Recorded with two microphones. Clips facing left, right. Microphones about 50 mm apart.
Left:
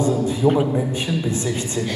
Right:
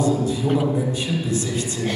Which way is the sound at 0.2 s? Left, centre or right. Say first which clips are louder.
Left 3 dB; left.